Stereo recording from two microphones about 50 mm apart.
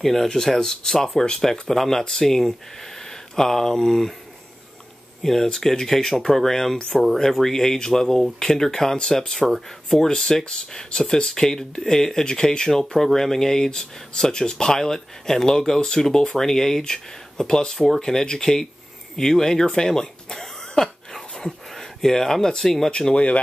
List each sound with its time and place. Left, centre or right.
0.0 s speech: centre
5.2 s speech: centre
17.7 s speech: centre
19.1 s throat clearing: centre
22.8 s speech: centre